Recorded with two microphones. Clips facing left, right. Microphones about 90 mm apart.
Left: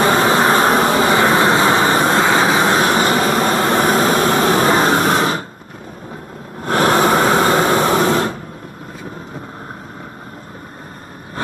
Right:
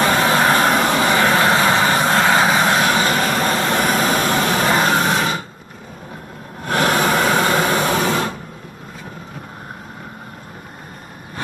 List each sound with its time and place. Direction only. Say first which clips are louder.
0.0 s vehicle: left 2 dB; 25° left (ahead or behind)
2.2 s vehicle: left 1 dB; 5° left (ahead or behind)
2.6 s vehicle: left 2 dB; 25° left (ahead or behind)
3.6 s a sound: left 3 dB; 25° left (ahead or behind)
6.6 s vehicle: left 4 dB; 35° left (ahead or behind)